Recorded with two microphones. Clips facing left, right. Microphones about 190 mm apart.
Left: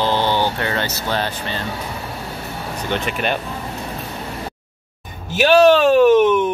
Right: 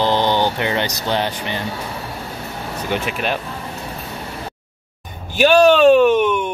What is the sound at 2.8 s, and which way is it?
Speech, 5° right (ahead or behind).